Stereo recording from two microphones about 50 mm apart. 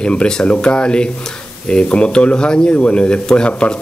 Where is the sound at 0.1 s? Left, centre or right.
Left.